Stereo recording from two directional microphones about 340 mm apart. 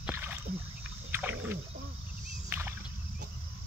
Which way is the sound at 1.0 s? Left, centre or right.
Centre.